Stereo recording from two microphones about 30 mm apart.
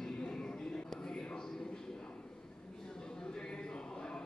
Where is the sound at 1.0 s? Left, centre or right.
Left.